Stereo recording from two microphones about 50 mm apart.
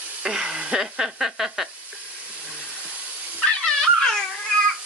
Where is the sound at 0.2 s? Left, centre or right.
Centre.